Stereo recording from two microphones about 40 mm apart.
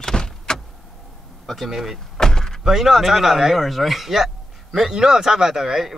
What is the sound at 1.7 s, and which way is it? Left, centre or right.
Speech, centre.